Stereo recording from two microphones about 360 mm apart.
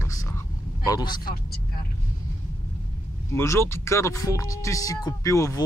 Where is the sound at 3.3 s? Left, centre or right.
Centre.